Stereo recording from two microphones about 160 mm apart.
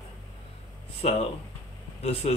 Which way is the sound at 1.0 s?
40° left (ahead or behind).